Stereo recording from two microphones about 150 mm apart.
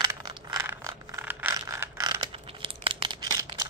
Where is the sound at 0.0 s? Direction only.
25° right (ahead or behind).